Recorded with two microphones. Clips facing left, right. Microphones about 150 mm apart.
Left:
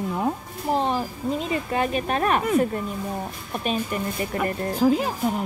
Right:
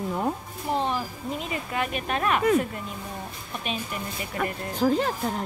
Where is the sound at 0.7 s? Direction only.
35° left (ahead or behind).